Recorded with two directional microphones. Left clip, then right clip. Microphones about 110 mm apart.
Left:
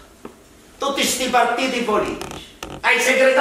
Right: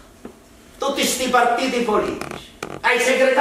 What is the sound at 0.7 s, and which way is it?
A man's voice, centre (ahead or behind).